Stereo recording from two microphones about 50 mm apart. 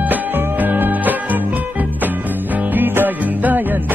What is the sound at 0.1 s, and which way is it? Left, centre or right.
Music, right.